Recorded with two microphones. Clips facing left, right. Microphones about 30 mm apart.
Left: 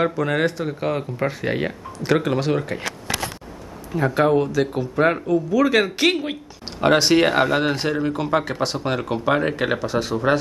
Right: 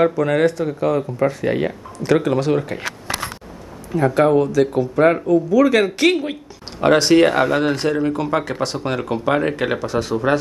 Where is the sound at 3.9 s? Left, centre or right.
Centre.